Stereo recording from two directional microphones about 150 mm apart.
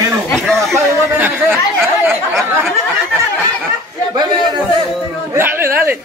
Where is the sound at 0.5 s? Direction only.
15° right (ahead or behind).